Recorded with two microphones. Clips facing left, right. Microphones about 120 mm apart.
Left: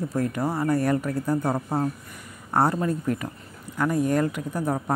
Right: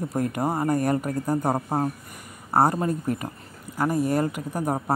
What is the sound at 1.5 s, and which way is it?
Speech, 30° right (ahead or behind).